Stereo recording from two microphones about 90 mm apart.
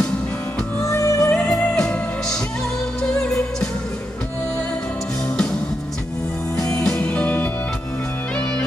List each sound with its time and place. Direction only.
0.8 s music: 35° left (ahead or behind)
1.5 s music: 5° left (ahead or behind)
6.5 s music: 10° left (ahead or behind)